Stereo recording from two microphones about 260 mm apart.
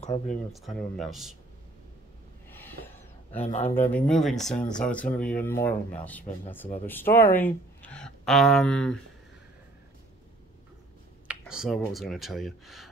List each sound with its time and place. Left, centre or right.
0.0 s speech: left
0.5 s speech: centre
2.5 s a sound: centre
3.3 s a man's voice: left
3.7 s speech: centre
11.2 s speech: centre